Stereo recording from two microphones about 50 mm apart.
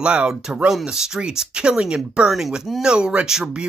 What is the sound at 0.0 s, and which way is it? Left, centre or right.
Speech, centre.